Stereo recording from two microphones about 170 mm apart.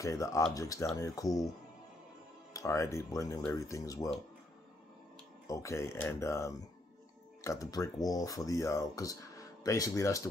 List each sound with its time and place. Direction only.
0.0 s speech: 20° left (ahead or behind)
2.5 s speech: 20° left (ahead or behind)
5.5 s speech: 15° left (ahead or behind)